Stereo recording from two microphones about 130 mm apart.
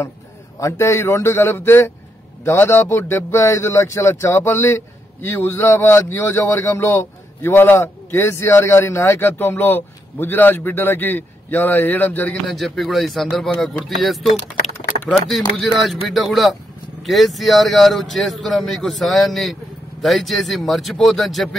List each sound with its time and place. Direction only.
0.6 s a man's voice: 25° left (ahead or behind)
12.4 s speech: centre (ahead or behind)
15.2 s speech: centre (ahead or behind)